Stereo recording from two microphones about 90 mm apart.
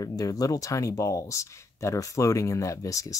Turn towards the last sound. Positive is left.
turn(degrees=40)  # may be behind; listen again after turning